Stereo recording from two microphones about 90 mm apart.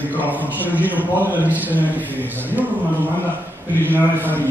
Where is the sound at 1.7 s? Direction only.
20° right (ahead or behind).